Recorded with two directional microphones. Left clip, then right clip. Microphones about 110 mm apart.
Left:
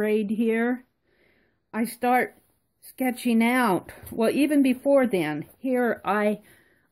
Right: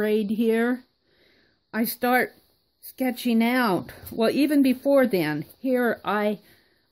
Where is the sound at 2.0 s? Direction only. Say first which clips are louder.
Even; 25° right (ahead or behind).